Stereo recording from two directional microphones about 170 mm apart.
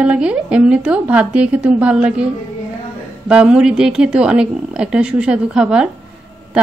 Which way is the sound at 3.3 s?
5° right (ahead or behind).